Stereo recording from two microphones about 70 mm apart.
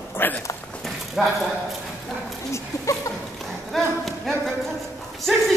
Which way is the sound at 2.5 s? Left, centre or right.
Left.